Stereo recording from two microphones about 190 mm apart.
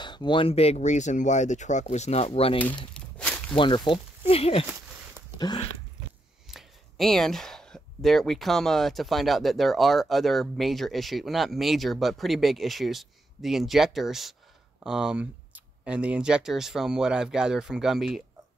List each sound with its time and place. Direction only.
0.0 s speech: 25° left (ahead or behind)
2.9 s a sound: 5° left (ahead or behind)
3.5 s speech: 25° left (ahead or behind)
4.6 s a sound: 15° right (ahead or behind)
5.4 s speech: 25° left (ahead or behind)
6.5 s speech: centre (ahead or behind)